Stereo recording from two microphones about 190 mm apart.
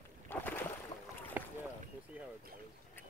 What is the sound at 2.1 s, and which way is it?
Boat, 10° right (ahead or behind).